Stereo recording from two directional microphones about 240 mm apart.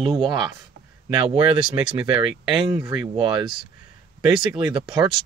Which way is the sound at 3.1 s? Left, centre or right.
Centre.